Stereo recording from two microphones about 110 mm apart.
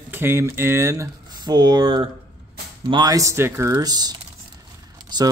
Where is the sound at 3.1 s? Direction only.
25° right (ahead or behind).